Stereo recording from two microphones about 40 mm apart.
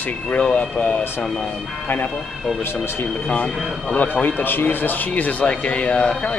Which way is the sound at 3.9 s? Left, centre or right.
Left.